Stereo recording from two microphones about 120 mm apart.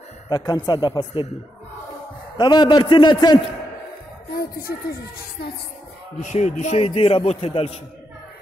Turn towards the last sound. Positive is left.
turn(degrees=50)  # may be behind; listen again after turning